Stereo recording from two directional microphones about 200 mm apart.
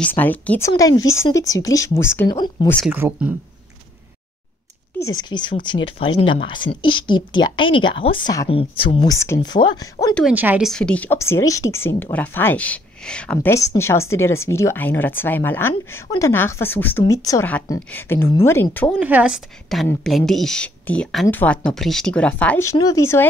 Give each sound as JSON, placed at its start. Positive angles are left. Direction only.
{"t": 0.0, "sound": "speech", "side_deg": 10}
{"t": 2.9, "sound": "speech", "side_deg": -10}
{"t": 4.9, "sound": "a woman's voice", "side_deg": 20}
{"t": 9.2, "sound": "a woman's voice", "side_deg": 15}
{"t": 10.3, "sound": "speech", "side_deg": -10}
{"t": 10.7, "sound": "speech", "side_deg": 5}
{"t": 18.9, "sound": "speech", "side_deg": -5}